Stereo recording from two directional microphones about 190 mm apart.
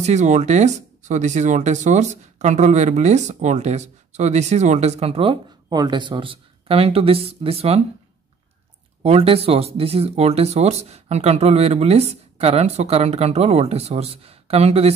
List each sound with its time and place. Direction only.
0.0 s speech: 35° right (ahead or behind)
9.0 s speech: 30° right (ahead or behind)